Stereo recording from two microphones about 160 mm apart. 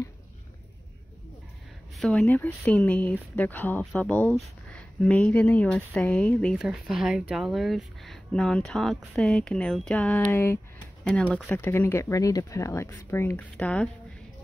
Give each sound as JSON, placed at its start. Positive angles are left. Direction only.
{"t": 2.0, "sound": "speech", "side_deg": 10}